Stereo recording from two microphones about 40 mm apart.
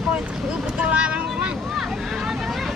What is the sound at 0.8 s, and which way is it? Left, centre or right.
Vehicle, right.